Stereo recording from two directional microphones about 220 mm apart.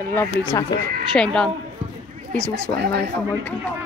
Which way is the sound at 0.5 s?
15° left (ahead or behind).